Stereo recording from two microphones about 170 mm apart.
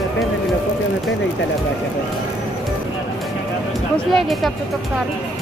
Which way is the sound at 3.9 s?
Centre (ahead or behind).